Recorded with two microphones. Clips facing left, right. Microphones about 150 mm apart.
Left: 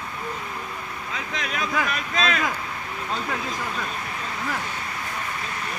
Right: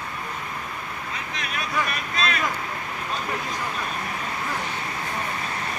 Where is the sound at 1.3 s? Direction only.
90° left.